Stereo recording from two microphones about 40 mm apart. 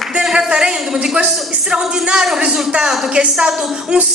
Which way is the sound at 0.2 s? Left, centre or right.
Centre.